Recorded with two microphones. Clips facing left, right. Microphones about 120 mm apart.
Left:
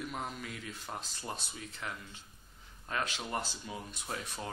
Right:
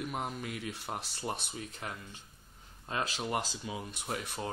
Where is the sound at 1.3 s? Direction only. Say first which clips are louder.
Right 4 dB; 50° right (ahead or behind).